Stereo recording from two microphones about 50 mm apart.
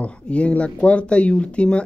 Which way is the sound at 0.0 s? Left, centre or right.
Left.